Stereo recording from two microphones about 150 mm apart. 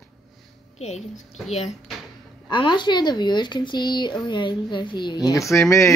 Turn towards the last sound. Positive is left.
turn(degrees=20)  # may be behind; listen again after turning